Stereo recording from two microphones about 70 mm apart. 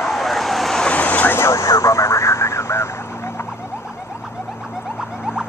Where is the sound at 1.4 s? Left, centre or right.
Left.